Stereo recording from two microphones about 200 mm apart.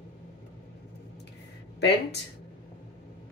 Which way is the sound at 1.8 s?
60° left (ahead or behind).